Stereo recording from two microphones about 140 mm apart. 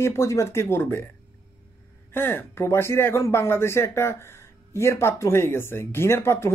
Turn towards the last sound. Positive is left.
turn(degrees=20)  # may be behind; listen again after turning